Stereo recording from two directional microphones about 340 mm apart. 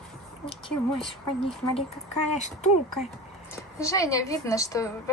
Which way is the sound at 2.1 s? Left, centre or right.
Centre.